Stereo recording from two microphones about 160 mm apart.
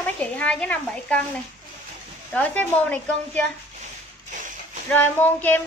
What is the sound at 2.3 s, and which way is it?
A woman's voice, 10° left (ahead or behind).